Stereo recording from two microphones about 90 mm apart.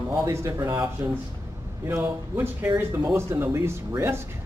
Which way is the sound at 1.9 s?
25° right (ahead or behind).